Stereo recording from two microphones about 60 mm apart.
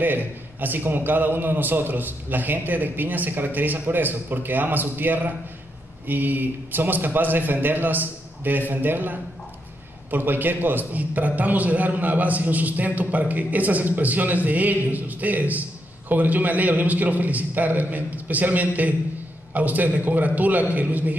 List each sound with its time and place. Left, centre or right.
0.0 s a man's voice: right